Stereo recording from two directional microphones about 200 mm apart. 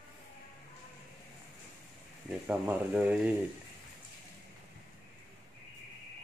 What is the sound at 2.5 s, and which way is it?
Speech, 5° right (ahead or behind).